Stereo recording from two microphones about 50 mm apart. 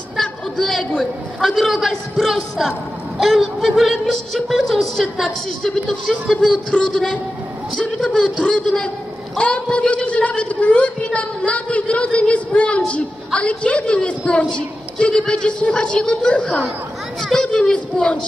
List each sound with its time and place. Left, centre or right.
0.2 s a sound: centre
1.7 s speech: centre
5.0 s a woman's voice: centre
5.6 s a child's voice: centre
8.0 s a child's voice: centre